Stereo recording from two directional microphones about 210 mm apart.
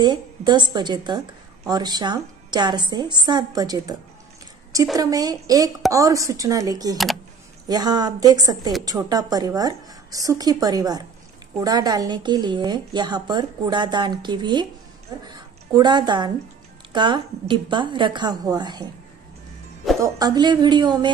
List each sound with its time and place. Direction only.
0.0 s a woman's voice: 20° right (ahead or behind)
20.0 s a woman's voice: 20° right (ahead or behind)